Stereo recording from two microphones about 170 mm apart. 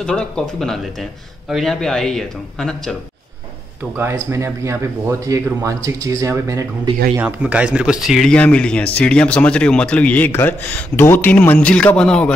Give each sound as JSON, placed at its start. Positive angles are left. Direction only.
{"t": 0.0, "sound": "speech", "side_deg": 5}
{"t": 4.0, "sound": "speech", "side_deg": -15}
{"t": 7.2, "sound": "speech", "side_deg": -10}